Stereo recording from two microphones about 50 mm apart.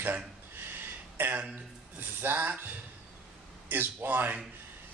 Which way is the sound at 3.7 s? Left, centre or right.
Right.